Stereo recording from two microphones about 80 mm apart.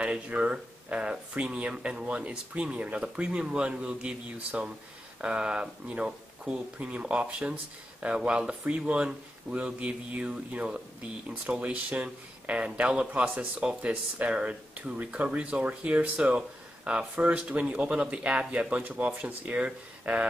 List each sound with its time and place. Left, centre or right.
0.0 s speech: centre